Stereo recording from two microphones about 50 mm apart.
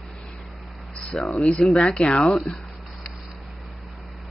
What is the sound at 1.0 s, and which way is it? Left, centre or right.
Speech, centre.